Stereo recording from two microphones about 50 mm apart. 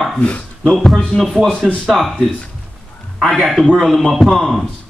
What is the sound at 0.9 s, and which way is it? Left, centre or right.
A man's voice, centre.